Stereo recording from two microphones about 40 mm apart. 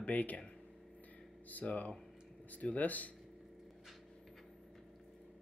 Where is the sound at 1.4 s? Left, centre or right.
Left.